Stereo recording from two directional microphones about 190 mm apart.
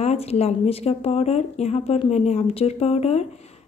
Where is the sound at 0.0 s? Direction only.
35° left (ahead or behind).